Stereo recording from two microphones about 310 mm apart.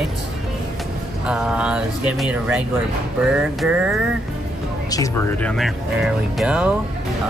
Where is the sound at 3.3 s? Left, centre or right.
Centre.